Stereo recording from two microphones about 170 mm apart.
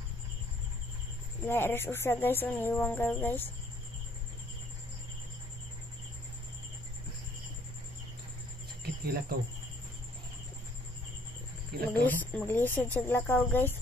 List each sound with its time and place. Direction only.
1.4 s speech: 10° left (ahead or behind)
8.8 s cricket: 65° right (ahead or behind)
11.7 s speech: 65° right (ahead or behind)
12.2 s speech: 10° left (ahead or behind)